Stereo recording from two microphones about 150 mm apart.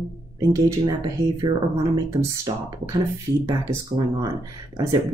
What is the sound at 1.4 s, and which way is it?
Speech, 25° right (ahead or behind).